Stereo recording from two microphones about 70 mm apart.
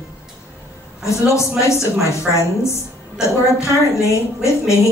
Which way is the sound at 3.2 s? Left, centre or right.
Left.